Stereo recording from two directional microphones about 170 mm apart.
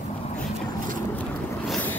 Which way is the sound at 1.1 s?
5° left (ahead or behind).